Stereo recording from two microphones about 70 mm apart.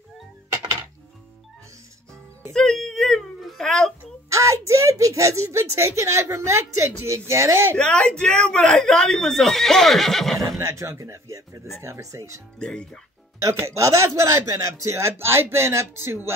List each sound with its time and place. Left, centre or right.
2.5 s a sound: centre
4.3 s speech: right
7.7 s speech: centre
10.6 s speech: right
12.5 s speech: centre
13.6 s speech: right